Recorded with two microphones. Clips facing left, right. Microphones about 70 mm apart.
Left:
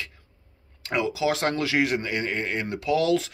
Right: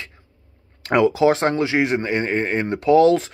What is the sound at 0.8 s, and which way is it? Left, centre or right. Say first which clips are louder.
Speech: right 9 dB; right.